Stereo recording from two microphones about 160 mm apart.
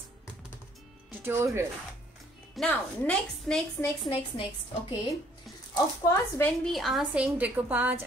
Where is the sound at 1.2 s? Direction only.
15° right (ahead or behind).